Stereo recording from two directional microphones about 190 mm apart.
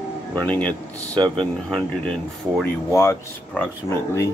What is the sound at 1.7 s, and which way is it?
Speech, 5° left (ahead or behind).